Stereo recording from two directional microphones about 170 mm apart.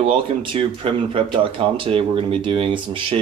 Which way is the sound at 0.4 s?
30° right (ahead or behind).